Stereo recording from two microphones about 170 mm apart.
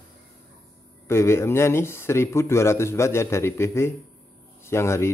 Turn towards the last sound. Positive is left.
turn(degrees=15)  # may be behind; listen again after turning